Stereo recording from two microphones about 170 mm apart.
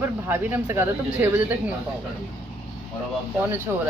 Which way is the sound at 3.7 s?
10° right (ahead or behind).